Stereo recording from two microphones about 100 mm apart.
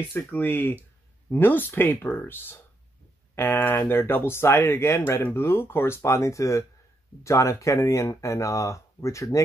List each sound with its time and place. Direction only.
0.1 s speech: 20° left (ahead or behind)